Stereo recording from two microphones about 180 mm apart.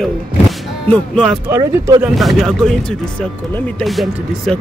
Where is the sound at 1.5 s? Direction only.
20° right (ahead or behind).